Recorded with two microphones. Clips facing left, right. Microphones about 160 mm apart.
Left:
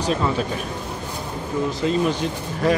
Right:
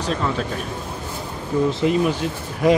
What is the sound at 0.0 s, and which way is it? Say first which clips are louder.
Speech: left 1 dB; 10° left (ahead or behind).